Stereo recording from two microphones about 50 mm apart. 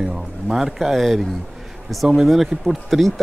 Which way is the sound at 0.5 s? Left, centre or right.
Centre.